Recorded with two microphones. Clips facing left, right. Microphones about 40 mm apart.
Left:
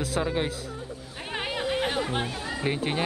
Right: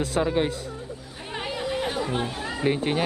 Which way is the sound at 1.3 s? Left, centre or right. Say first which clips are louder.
Even; left.